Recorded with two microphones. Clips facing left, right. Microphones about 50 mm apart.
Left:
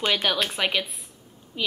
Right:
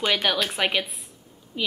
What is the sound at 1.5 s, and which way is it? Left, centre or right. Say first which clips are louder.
Speech: even; centre.